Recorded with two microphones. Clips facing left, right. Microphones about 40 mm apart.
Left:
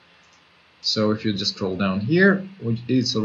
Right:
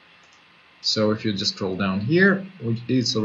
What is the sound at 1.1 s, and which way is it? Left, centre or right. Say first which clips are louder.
Speech: left 1 dB; centre.